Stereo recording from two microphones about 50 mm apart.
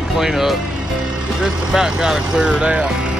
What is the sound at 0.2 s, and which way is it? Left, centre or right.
Speech, centre.